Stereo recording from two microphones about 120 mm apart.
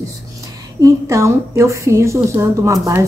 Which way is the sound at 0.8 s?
25° right (ahead or behind).